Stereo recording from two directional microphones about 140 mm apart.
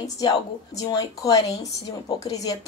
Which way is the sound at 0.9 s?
25° left (ahead or behind).